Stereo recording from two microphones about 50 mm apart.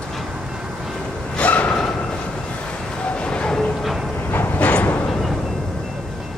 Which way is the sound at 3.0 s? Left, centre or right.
Left.